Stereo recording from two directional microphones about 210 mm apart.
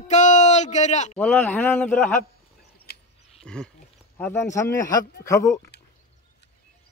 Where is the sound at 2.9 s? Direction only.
50° left (ahead or behind).